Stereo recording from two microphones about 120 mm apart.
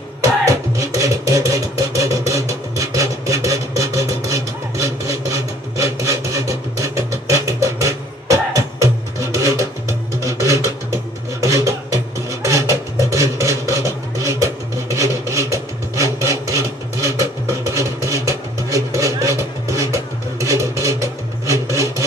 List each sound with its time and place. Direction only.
0.2 s music: 25° right (ahead or behind)
12.3 s a sound: 25° right (ahead or behind)
15.0 s vehicle: 25° right (ahead or behind)